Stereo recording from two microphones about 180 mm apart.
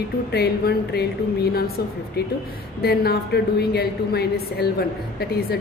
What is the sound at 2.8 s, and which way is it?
A woman's voice, 60° left (ahead or behind).